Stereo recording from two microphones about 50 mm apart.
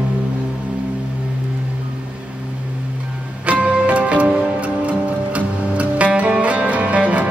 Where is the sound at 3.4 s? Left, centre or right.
Right.